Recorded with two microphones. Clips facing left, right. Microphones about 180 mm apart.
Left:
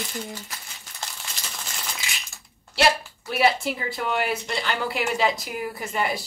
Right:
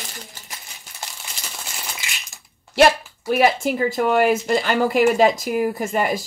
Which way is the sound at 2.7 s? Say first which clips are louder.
Right 7 dB; 50° right (ahead or behind).